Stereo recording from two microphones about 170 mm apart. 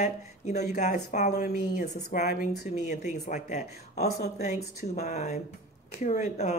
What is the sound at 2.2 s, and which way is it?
Speech, 60° left (ahead or behind).